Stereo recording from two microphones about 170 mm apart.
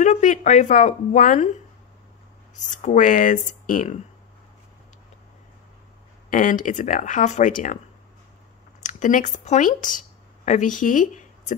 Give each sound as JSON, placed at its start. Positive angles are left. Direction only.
{"t": 0.0, "sound": "speech", "side_deg": 45}
{"t": 6.3, "sound": "speech", "side_deg": 50}
{"t": 8.8, "sound": "speech", "side_deg": 45}